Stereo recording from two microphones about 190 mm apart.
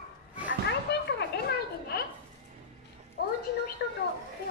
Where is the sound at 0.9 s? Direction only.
60° left (ahead or behind).